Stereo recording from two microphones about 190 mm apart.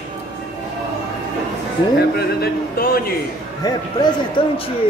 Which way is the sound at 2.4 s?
50° left (ahead or behind).